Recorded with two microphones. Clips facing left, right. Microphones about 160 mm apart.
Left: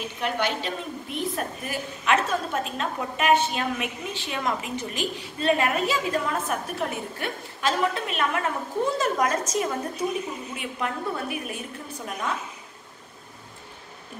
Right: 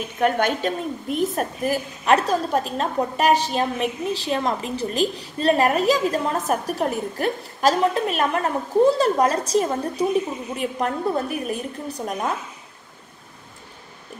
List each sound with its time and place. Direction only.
0.2 s a woman's voice: 50° right (ahead or behind)